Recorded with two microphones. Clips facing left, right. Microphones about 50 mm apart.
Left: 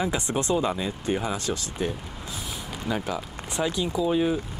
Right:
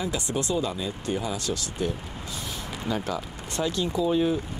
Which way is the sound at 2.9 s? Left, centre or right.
Centre.